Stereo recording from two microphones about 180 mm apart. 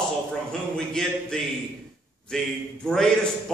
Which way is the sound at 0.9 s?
5° left (ahead or behind).